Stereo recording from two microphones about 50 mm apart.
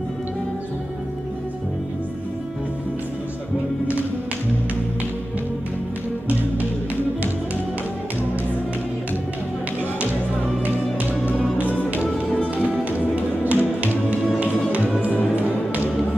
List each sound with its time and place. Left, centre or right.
10.6 s music: right
11.6 s music: left
12.6 s tap: right
15.3 s music: right